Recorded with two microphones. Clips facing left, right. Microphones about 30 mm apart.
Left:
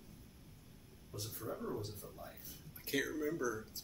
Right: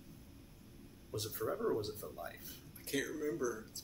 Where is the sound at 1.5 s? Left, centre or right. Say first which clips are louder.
Right 6 dB; right.